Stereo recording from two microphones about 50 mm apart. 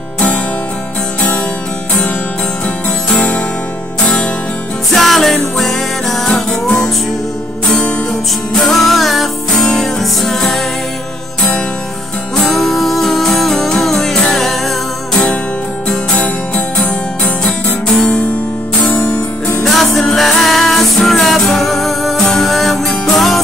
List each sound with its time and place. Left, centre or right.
3.2 s music: left
4.9 s music: centre
6.3 s music: centre
8.6 s music: centre
12.4 s music: centre
16.8 s music: left
19.6 s music: centre